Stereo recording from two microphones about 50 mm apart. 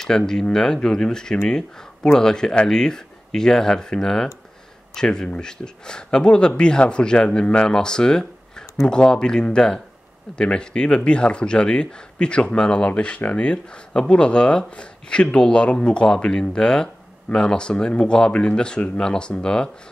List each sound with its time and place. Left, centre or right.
0.3 s a man's voice: centre